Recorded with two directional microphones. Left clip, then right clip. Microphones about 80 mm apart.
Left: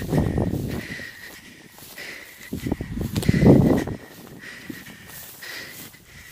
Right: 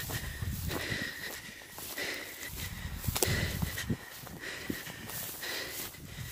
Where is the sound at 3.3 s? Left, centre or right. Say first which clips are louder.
Left 19 dB; right.